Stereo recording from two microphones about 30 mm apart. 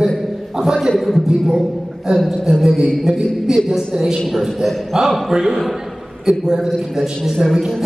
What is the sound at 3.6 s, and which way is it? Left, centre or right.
Speech, centre.